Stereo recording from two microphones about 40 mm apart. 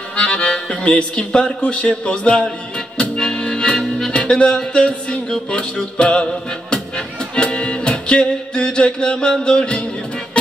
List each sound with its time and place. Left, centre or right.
0.1 s music: left
3.7 s music: centre
4.1 s music: left
5.3 s speech: centre
6.7 s music: left